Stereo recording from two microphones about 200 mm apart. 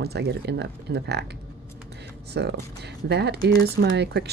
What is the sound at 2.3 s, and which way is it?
Speech, 55° right (ahead or behind).